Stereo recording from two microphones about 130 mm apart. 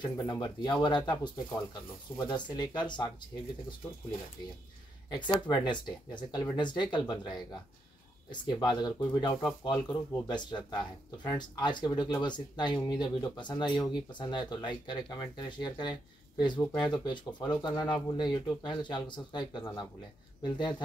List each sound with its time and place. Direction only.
0.0 s speech: 35° left (ahead or behind)
5.1 s speech: 30° left (ahead or behind)